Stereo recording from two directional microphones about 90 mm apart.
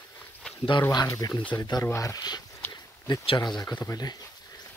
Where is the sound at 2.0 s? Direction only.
45° left (ahead or behind).